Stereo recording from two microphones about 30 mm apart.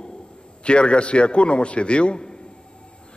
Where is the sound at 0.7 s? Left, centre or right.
Left.